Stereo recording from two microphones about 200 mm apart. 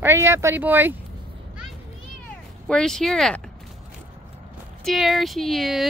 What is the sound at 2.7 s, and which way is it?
Speech, 5° left (ahead or behind).